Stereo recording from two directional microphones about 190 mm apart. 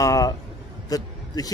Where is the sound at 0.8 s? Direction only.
20° left (ahead or behind).